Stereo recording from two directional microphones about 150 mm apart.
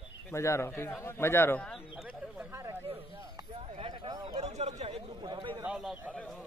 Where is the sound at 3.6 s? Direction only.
40° right (ahead or behind).